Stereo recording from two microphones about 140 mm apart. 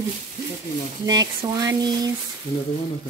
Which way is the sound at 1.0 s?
30° right (ahead or behind).